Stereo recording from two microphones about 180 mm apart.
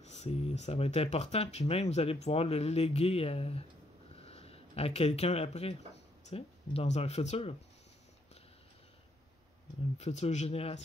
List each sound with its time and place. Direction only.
0.0 s speech: 40° left (ahead or behind)
4.2 s a sound: 35° left (ahead or behind)
6.2 s speech: 35° left (ahead or behind)
9.9 s speech: 40° left (ahead or behind)